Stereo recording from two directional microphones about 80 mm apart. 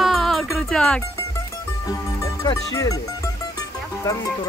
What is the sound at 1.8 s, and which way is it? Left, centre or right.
Music, left.